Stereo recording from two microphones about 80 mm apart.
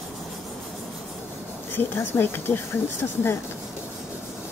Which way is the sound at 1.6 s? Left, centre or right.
Left.